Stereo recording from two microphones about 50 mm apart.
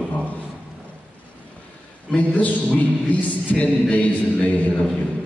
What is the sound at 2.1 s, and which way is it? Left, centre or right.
A man's voice, left.